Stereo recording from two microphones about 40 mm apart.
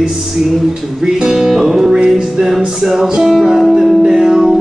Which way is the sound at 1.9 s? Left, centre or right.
Centre.